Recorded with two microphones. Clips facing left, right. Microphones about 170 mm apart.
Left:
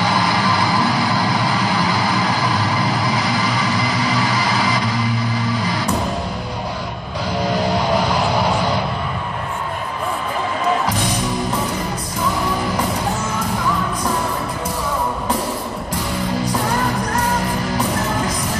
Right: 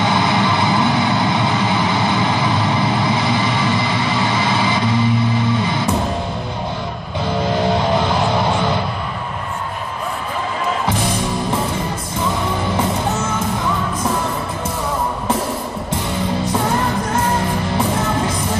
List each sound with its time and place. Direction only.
0.0 s vehicle: 25° right (ahead or behind)
5.5 s music: 25° right (ahead or behind)